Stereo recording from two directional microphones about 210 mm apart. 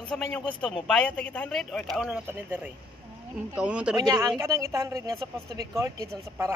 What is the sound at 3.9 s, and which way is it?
Speech, 20° right (ahead or behind).